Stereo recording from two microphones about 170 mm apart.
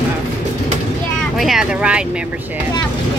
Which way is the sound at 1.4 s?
5° right (ahead or behind).